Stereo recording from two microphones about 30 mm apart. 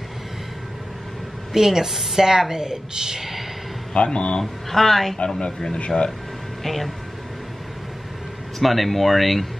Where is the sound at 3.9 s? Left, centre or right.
Left.